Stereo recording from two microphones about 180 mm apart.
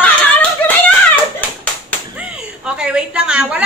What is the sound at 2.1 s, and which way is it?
A woman's voice, 5° right (ahead or behind).